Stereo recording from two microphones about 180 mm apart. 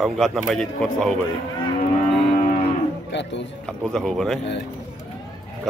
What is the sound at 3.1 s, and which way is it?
Speech, 80° left.